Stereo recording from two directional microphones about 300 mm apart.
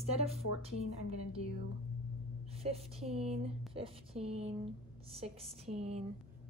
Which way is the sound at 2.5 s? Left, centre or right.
Centre.